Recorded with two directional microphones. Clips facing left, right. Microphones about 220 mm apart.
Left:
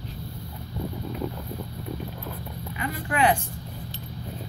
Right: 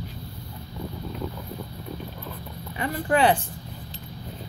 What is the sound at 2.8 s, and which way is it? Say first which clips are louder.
Speech: right 3 dB; 35° right (ahead or behind).